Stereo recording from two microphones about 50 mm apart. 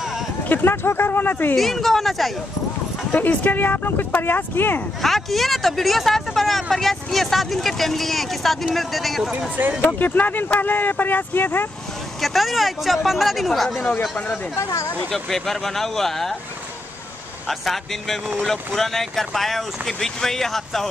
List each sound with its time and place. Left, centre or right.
0.5 s speech: left
1.6 s speech: centre
3.1 s speech: left
5.0 s speech: centre
9.3 s speech: right
9.9 s speech: left
12.2 s speech: centre
15.0 s speech: centre
17.5 s speech: centre